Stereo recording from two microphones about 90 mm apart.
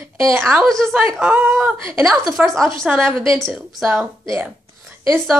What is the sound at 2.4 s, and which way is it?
Speech, 15° right (ahead or behind).